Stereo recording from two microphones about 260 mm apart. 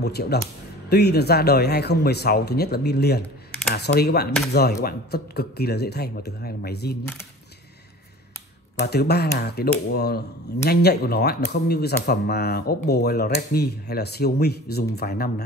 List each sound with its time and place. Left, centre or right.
0.0 s speech: left
8.7 s speech: left